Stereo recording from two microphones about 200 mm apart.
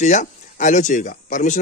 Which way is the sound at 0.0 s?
35° left (ahead or behind).